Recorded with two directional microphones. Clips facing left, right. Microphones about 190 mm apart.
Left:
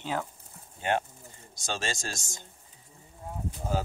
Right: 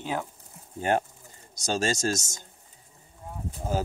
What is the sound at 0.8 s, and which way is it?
Speech, 40° right (ahead or behind).